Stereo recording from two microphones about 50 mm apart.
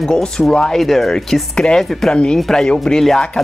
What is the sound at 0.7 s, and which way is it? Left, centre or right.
Speech, centre.